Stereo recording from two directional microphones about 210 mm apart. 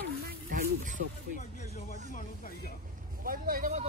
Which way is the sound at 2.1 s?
45° left (ahead or behind).